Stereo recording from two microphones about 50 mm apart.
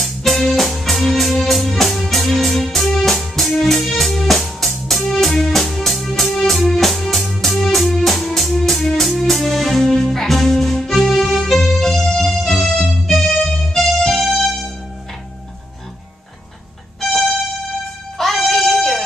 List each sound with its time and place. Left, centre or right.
0.0 s music: centre
17.1 s music: centre